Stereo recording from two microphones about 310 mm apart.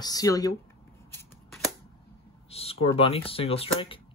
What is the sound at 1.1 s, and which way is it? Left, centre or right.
Shuffling cards, centre.